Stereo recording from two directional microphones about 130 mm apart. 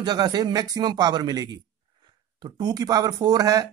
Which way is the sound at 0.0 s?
30° right (ahead or behind).